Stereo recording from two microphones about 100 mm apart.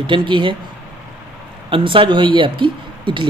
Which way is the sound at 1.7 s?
60° right (ahead or behind).